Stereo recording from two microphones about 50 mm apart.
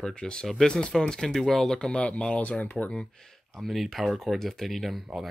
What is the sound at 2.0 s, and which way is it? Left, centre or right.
Speech, left.